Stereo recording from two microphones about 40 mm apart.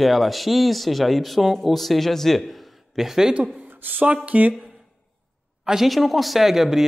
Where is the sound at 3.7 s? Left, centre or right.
Right.